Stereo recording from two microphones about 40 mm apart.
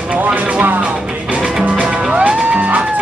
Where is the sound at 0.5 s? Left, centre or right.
Right.